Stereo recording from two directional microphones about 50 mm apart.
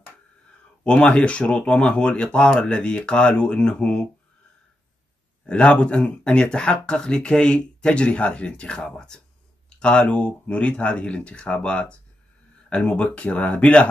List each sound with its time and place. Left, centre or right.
0.8 s speech: left
5.5 s speech: left